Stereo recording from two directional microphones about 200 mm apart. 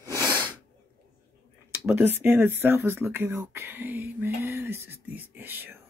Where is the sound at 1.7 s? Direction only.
10° right (ahead or behind).